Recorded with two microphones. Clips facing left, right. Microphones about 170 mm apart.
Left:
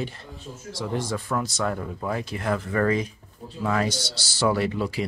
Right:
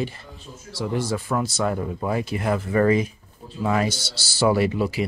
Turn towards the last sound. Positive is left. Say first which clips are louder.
# right 4 dB
turn(degrees=-10)  # may be behind; listen again after turning